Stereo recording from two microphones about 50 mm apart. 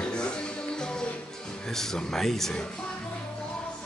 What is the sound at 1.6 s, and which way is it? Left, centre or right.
Speech, centre.